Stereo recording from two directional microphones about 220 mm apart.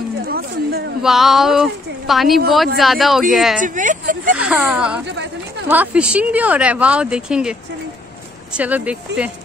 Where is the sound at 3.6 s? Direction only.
35° right (ahead or behind).